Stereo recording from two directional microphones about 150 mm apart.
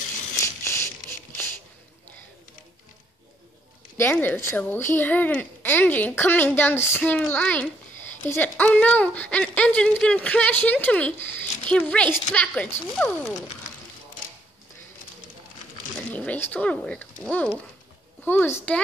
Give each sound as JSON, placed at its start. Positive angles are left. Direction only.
{"t": 0.4, "sound": "a sound", "side_deg": 15}
{"t": 3.9, "sound": "speech", "side_deg": 15}
{"t": 16.2, "sound": "speech", "side_deg": 10}